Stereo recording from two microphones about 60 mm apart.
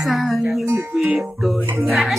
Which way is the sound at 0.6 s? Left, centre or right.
Right.